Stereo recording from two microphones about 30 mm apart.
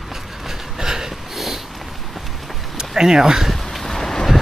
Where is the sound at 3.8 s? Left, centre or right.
Centre.